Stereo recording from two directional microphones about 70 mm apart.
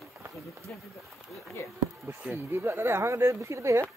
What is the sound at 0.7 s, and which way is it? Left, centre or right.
Speech, centre.